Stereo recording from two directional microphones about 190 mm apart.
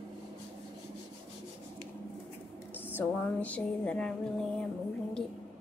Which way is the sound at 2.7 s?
10° left (ahead or behind).